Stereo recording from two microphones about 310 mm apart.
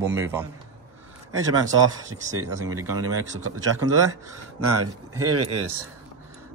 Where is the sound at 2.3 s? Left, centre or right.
Right.